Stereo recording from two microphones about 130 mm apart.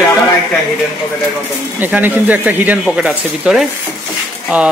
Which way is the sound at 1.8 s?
15° right (ahead or behind).